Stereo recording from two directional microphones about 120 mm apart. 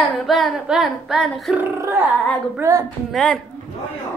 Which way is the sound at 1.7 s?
25° right (ahead or behind).